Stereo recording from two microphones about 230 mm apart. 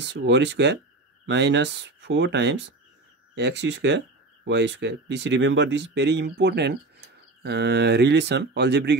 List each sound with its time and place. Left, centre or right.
0.0 s speech: right